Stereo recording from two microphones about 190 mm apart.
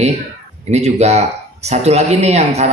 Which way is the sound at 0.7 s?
35° right (ahead or behind).